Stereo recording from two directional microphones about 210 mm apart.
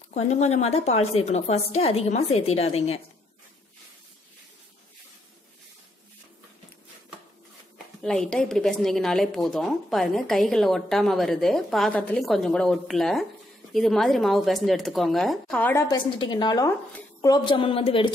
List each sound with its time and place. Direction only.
0.1 s a woman's voice: 30° left (ahead or behind)
8.0 s a woman's voice: 5° left (ahead or behind)
15.9 s a woman's voice: 20° left (ahead or behind)